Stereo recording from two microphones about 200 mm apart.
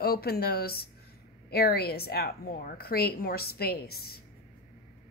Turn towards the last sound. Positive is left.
turn(degrees=50)  # may be behind; listen again after turning